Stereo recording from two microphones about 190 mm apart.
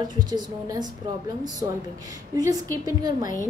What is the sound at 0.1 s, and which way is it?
A woman's voice, 20° right (ahead or behind).